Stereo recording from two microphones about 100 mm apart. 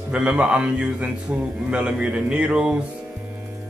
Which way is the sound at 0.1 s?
10° right (ahead or behind).